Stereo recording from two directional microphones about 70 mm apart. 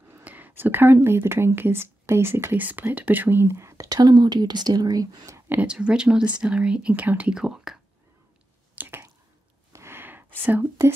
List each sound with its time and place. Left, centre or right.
0.2 s speech: right
5.7 s speech: centre
7.3 s speech: centre
8.7 s a sound: right
9.7 s a sound: right
10.4 s speech: right